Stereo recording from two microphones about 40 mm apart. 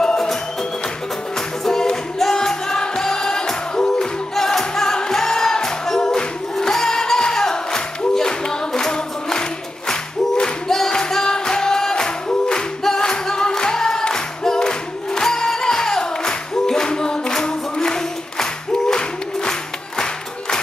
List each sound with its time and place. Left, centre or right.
0.0 s music: centre
1.6 s music: centre